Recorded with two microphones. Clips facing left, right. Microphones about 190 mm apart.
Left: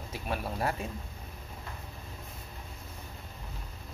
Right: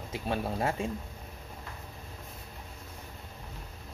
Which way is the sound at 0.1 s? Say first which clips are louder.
Right 3 dB; 25° right (ahead or behind).